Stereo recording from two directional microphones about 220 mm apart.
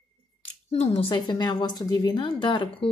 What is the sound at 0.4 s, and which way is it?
A woman's voice, 25° left (ahead or behind).